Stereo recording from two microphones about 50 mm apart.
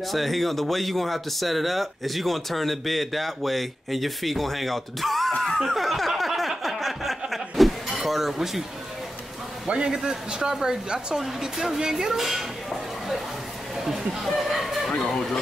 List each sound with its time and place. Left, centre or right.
0.1 s speech: centre
5.6 s a sound: centre
9.7 s speech: centre
13.7 s speech: centre
15.0 s speech: centre